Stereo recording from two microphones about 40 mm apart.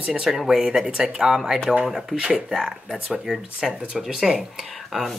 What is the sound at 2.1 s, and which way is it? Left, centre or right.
Speech, centre.